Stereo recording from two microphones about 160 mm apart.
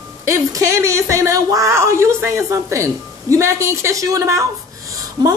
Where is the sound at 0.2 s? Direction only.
20° right (ahead or behind).